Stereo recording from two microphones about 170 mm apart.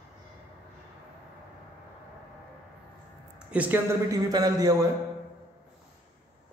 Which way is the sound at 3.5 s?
10° right (ahead or behind).